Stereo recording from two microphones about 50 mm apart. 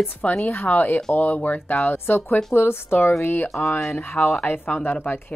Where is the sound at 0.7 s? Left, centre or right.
Left.